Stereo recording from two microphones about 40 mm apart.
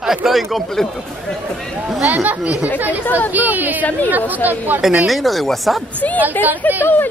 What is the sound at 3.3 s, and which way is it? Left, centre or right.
Speech, right.